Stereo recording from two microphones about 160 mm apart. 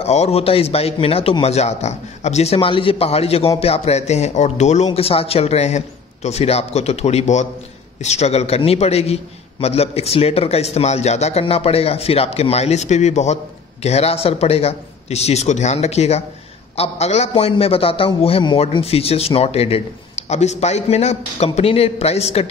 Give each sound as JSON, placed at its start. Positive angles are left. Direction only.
{"t": 0.0, "sound": "a man's voice", "side_deg": 40}